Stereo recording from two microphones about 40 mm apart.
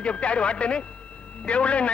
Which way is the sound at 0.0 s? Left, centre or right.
Left.